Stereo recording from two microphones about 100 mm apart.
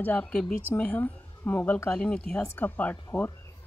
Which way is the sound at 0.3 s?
5° left (ahead or behind).